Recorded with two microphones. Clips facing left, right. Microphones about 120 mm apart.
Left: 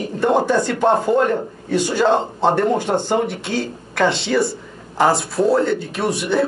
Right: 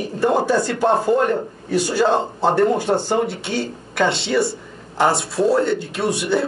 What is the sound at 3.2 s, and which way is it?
Speech, 30° right (ahead or behind).